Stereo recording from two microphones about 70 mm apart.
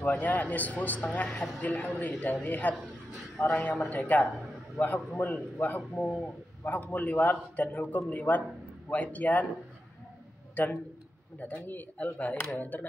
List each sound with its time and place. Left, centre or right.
0.0 s a man's voice: left
10.5 s a man's voice: left